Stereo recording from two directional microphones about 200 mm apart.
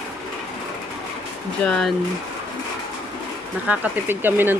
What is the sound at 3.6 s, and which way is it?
Speech, 10° right (ahead or behind).